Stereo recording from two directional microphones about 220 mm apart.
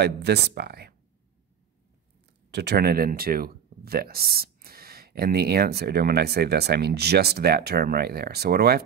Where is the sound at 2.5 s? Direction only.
50° right (ahead or behind).